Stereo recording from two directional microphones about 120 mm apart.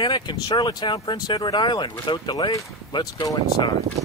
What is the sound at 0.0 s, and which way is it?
Speech, 40° left (ahead or behind).